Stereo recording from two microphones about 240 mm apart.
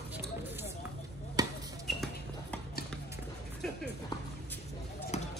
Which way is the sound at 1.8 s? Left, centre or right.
Centre.